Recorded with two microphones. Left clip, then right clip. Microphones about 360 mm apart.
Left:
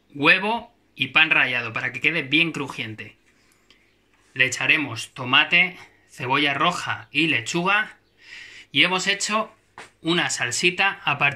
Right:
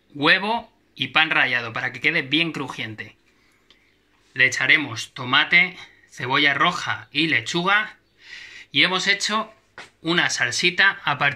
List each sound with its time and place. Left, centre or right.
0.2 s speech: centre
4.3 s speech: centre